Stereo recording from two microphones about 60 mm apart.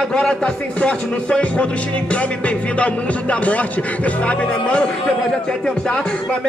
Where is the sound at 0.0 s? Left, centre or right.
Centre.